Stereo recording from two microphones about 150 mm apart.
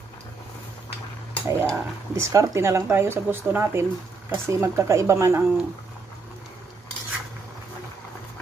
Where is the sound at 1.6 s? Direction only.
20° right (ahead or behind).